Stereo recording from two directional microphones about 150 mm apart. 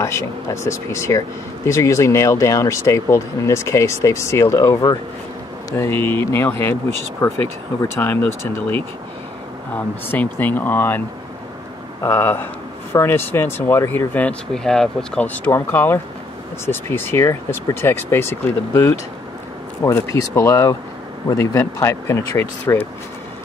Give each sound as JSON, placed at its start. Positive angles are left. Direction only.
{"t": 0.0, "sound": "speech", "side_deg": 20}
{"t": 12.0, "sound": "speech", "side_deg": 15}